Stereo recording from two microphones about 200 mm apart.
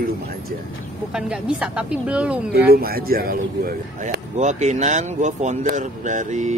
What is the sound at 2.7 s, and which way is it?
Speech, 50° right (ahead or behind).